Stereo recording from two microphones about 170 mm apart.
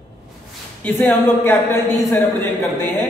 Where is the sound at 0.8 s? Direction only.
10° left (ahead or behind).